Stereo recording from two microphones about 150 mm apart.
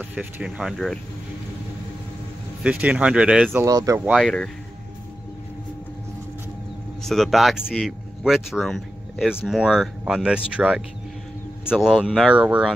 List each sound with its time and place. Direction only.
0.1 s speech: 5° right (ahead or behind)
2.6 s speech: 10° right (ahead or behind)
3.5 s speech: 20° right (ahead or behind)
4.0 s speech: centre (ahead or behind)
7.0 s speech: centre (ahead or behind)